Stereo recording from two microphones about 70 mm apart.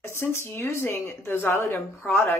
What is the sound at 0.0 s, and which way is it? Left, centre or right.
Speech, left.